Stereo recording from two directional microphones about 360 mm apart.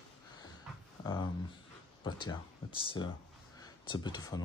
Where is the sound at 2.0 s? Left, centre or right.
Centre.